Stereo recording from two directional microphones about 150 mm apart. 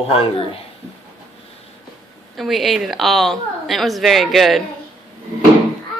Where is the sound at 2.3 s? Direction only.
Centre (ahead or behind).